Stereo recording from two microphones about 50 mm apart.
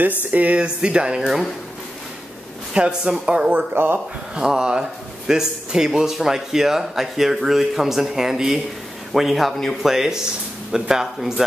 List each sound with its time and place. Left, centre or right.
0.2 s speech: right
2.7 s speech: centre
3.4 s speech: right
4.4 s speech: centre